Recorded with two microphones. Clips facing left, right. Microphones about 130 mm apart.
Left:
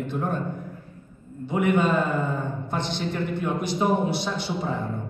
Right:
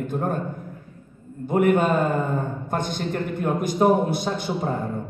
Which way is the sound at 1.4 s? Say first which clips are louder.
Right 3 dB; 50° right (ahead or behind).